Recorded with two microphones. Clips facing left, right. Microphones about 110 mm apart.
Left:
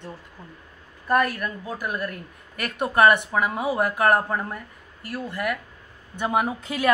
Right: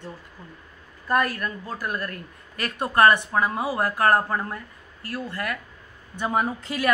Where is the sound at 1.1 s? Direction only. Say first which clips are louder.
Left 1 dB; 10° left (ahead or behind).